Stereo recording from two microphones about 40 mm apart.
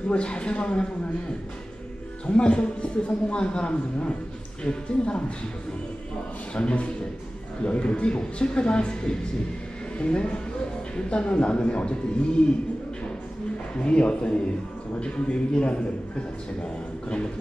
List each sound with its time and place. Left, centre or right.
0.1 s a man's voice: left
2.2 s a man's voice: left
6.5 s a man's voice: left
13.7 s a man's voice: left